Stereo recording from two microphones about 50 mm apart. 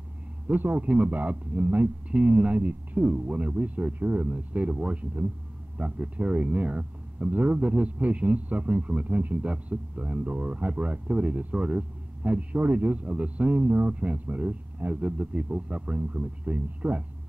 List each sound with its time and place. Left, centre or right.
0.5 s speech: right
13.7 s speech: right